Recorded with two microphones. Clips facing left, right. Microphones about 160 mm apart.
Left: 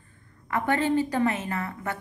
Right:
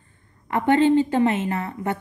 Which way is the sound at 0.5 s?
25° right (ahead or behind).